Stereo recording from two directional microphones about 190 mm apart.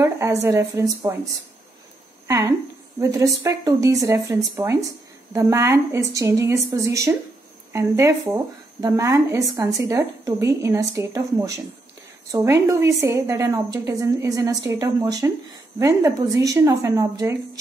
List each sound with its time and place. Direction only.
0.0 s a woman's voice: 15° right (ahead or behind)
2.2 s a woman's voice: 15° right (ahead or behind)
12.6 s a woman's voice: 15° right (ahead or behind)